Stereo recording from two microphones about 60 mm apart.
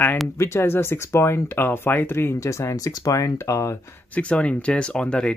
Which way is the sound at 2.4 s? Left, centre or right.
Left.